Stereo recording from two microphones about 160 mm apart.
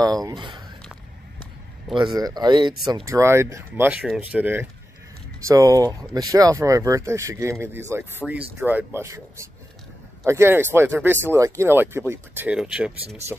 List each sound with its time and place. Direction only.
0.0 s speech: 25° right (ahead or behind)
2.0 s speech: 25° right (ahead or behind); by 4.6 s 10° right (ahead or behind)
5.5 s speech: 20° right (ahead or behind); by 12.9 s 5° right (ahead or behind)